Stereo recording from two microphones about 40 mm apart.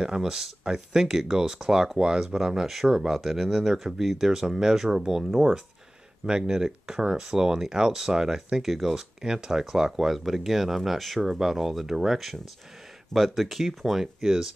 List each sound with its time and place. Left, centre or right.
0.0 s speech: centre
6.2 s speech: centre